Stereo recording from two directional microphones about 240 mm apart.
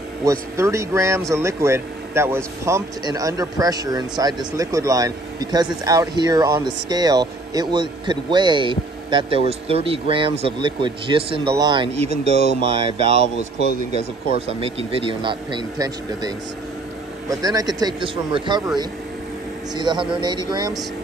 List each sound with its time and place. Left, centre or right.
0.2 s speech: centre
14.6 s speech: right
17.4 s speech: centre
19.7 s speech: centre